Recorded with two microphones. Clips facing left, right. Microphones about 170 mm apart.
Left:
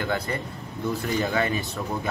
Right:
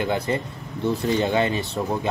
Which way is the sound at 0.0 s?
20° right (ahead or behind).